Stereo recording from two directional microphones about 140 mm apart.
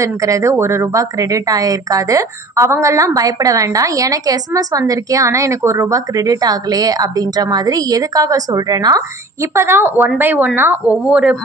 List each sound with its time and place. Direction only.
0.0 s a woman's voice: 25° right (ahead or behind); by 11.3 s 5° right (ahead or behind)